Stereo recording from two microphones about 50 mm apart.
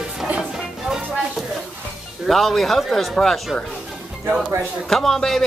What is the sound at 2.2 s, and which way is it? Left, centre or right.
Speech, centre.